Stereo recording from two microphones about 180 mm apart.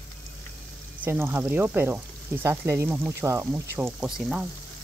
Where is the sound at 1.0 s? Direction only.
10° right (ahead or behind).